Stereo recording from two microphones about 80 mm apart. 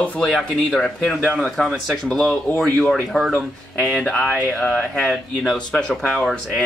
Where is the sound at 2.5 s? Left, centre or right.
Centre.